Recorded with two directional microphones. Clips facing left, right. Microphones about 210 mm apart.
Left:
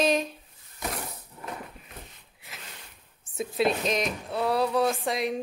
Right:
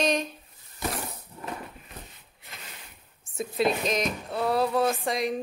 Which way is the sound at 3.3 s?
Centre (ahead or behind).